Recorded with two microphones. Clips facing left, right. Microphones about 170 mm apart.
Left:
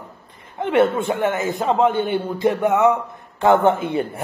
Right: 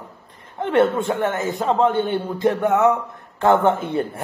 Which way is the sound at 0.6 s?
5° left (ahead or behind).